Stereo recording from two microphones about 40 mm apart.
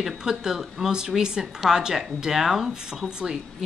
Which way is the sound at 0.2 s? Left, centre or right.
Centre.